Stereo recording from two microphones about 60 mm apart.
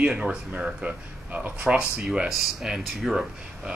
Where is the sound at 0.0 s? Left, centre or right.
Centre.